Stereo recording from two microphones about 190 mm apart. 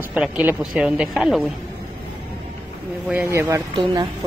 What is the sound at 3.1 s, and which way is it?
Speech, 10° right (ahead or behind).